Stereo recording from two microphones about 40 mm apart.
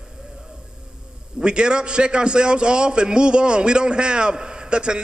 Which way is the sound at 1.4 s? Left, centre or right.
Right.